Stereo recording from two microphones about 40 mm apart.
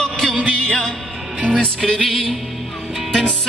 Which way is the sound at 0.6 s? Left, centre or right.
Centre.